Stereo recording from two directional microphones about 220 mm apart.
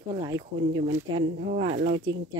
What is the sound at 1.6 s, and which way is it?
Speech, 30° right (ahead or behind).